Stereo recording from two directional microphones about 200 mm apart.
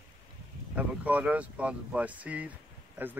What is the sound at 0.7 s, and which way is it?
Speech, 5° right (ahead or behind).